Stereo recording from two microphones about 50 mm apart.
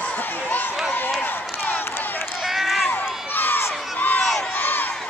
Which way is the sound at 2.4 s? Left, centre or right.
Centre.